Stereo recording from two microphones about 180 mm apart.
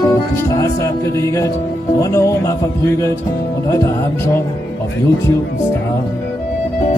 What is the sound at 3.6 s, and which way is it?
Speech, 20° left (ahead or behind).